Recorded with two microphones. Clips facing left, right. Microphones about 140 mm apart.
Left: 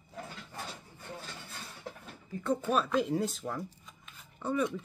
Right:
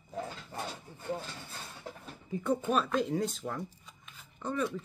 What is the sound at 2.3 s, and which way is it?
Speech, 15° right (ahead or behind).